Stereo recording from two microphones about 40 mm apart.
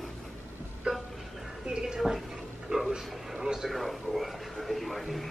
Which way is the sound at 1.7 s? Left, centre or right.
Right.